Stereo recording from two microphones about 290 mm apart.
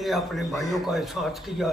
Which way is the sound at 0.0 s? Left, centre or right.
Centre.